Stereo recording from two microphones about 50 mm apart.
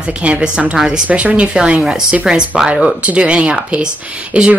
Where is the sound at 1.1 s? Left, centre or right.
Right.